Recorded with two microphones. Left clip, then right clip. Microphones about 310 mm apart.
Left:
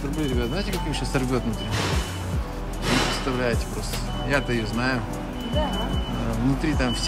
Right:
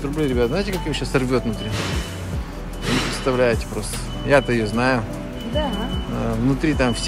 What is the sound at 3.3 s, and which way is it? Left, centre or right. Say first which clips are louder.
Speech: right 7 dB; centre.